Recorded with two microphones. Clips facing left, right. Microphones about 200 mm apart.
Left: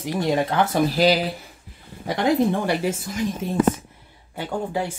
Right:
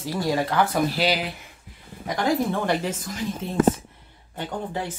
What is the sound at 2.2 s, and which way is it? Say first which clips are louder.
Speech: left 3 dB; 15° left (ahead or behind).